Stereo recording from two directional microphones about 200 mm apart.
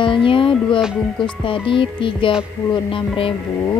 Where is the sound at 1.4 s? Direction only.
25° left (ahead or behind).